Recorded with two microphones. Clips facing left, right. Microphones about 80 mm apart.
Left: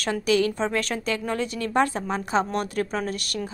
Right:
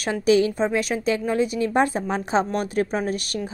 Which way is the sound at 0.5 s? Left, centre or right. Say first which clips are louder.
Right 3 dB; centre.